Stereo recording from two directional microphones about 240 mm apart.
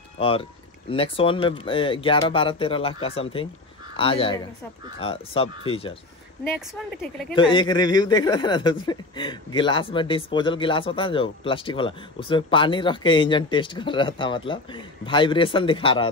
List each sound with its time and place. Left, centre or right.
0.2 s speech: left
6.5 s speech: centre
7.3 s speech: left